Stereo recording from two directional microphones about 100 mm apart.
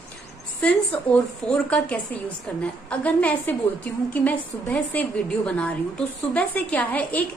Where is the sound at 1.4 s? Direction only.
10° left (ahead or behind).